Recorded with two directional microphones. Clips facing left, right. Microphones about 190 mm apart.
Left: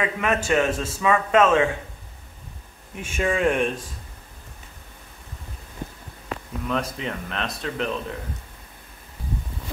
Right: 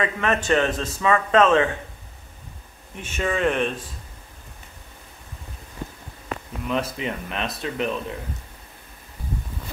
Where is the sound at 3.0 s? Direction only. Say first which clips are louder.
Left 1 dB; 10° left (ahead or behind).